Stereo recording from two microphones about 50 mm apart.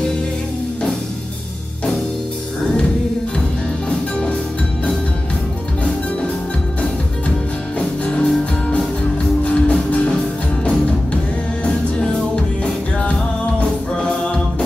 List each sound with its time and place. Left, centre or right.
8.0 s music: left
13.6 s music: centre